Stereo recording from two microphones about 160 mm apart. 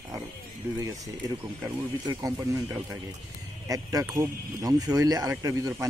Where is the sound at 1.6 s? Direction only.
20° right (ahead or behind).